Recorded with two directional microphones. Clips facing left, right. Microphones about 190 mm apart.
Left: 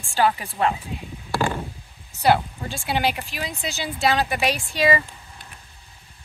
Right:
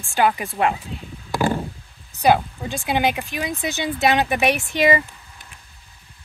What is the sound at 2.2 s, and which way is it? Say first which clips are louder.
Speech: right 2 dB; 20° right (ahead or behind).